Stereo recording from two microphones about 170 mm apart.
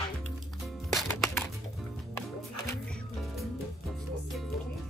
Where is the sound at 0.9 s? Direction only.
Centre (ahead or behind).